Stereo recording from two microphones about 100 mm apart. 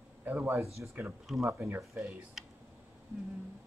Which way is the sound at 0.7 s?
25° right (ahead or behind).